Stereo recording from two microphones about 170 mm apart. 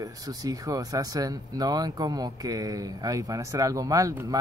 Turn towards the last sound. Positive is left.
turn(degrees=-20)  # may be behind; listen again after turning